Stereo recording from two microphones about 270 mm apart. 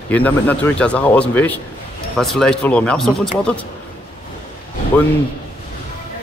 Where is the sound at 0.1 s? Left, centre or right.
Centre.